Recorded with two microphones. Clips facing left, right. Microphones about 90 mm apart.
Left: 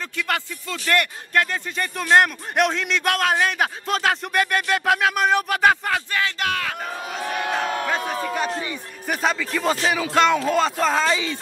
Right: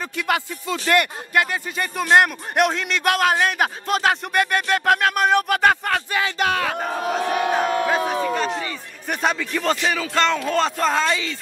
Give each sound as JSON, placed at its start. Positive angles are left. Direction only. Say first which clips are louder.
{"t": 0.1, "sound": "speech", "louder": "right 3 dB", "side_deg": -15}
{"t": 6.1, "sound": "speech", "louder": "right 2 dB", "side_deg": -15}
{"t": 6.4, "sound": "speech", "louder": "right 4 dB", "side_deg": -25}
{"t": 6.8, "sound": "speech", "louder": "right 6 dB", "side_deg": -50}
{"t": 7.8, "sound": "speech", "louder": "right 4 dB", "side_deg": -10}